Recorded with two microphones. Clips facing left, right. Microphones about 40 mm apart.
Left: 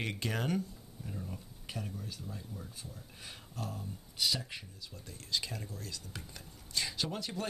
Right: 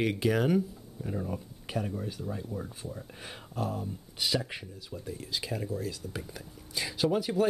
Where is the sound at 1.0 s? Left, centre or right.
Right.